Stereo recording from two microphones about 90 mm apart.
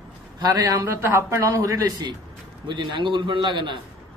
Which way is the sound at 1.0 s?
25° right (ahead or behind).